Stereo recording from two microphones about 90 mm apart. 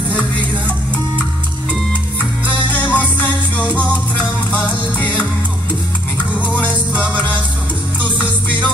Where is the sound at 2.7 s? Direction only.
15° left (ahead or behind).